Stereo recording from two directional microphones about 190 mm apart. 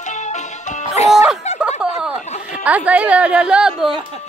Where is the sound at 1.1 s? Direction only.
Centre (ahead or behind).